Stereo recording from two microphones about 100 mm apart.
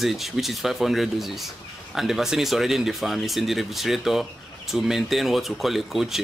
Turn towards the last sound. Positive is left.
turn(degrees=-5)  # may be behind; listen again after turning